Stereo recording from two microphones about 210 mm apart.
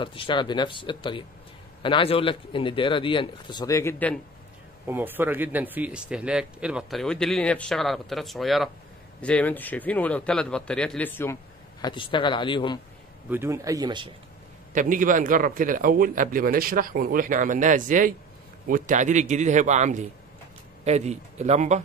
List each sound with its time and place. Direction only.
0.0 s a man's voice: 25° left (ahead or behind)
4.8 s a man's voice: 10° right (ahead or behind); by 11.3 s 10° left (ahead or behind)
11.8 s a man's voice: 25° left (ahead or behind)
13.3 s speech: 10° right (ahead or behind)
14.7 s a man's voice: 40° right (ahead or behind)